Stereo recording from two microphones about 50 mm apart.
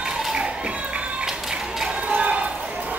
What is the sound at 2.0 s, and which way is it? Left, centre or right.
Basketball bounce, right.